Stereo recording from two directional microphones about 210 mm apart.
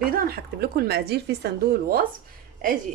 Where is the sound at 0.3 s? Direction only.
50° right (ahead or behind).